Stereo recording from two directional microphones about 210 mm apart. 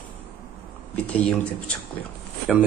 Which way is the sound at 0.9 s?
5° left (ahead or behind).